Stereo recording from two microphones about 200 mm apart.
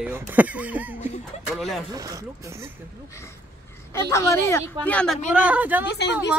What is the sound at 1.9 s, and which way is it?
Speech, 15° right (ahead or behind).